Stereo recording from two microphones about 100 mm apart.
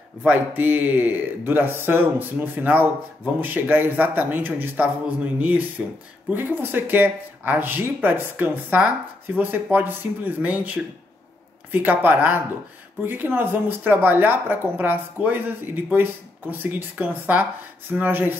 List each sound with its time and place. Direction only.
0.2 s speech: 15° right (ahead or behind)